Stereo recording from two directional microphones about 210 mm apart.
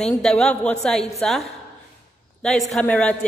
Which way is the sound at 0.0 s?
Centre (ahead or behind).